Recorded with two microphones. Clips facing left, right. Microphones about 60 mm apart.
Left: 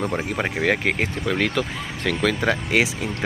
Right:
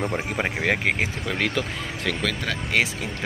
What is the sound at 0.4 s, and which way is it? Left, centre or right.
Speech, centre.